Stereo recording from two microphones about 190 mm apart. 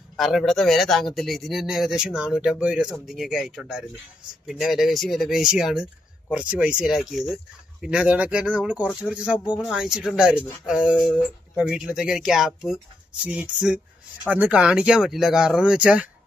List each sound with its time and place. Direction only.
0.2 s speech: centre (ahead or behind)